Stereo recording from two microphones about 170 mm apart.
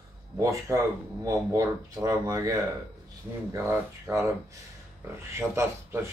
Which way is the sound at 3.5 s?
15° right (ahead or behind).